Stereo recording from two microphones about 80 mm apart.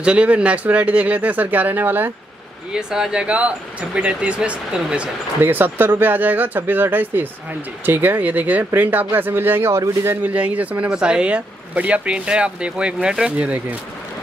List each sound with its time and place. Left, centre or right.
0.0 s speech: centre
2.7 s speech: centre
5.4 s speech: right
10.2 s speech: centre